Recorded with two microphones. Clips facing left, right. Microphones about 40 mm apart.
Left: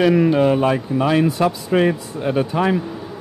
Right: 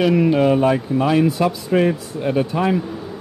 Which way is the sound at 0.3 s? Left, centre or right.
Centre.